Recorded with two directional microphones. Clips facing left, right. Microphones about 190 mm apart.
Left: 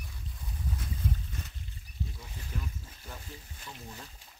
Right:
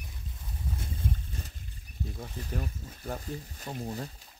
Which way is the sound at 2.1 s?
50° right (ahead or behind).